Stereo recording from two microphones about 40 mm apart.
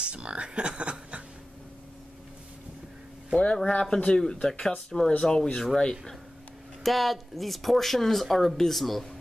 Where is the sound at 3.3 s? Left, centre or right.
Left.